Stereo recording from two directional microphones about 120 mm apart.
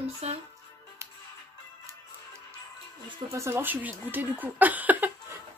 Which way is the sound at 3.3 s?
20° right (ahead or behind).